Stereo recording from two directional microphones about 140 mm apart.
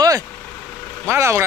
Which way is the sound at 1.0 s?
20° right (ahead or behind).